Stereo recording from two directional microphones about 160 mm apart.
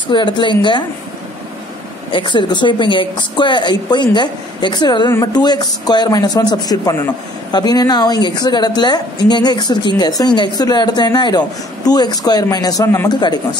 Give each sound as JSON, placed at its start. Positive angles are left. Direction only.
{"t": 0.1, "sound": "a woman's voice", "side_deg": 30}
{"t": 2.0, "sound": "a woman's voice", "side_deg": 30}
{"t": 13.2, "sound": "a woman's voice", "side_deg": 30}